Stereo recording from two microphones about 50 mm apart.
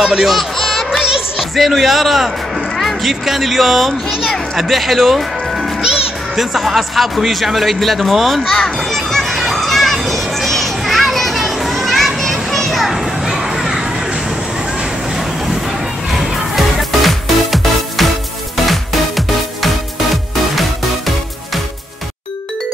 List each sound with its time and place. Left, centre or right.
0.0 s speech: centre
1.0 s music: centre
1.5 s speech: centre
8.5 s children playing: centre
14.8 s vehicle: centre
16.1 s music: centre